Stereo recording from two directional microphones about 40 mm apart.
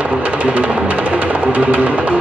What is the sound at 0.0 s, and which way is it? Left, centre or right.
Music, right.